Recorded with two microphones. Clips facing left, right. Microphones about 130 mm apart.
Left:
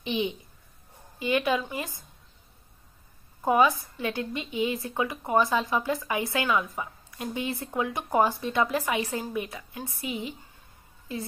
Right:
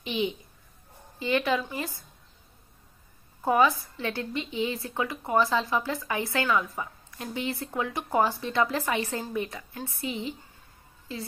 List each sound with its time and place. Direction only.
0.0 s a woman's voice: 20° left (ahead or behind)
3.4 s a woman's voice: 15° left (ahead or behind)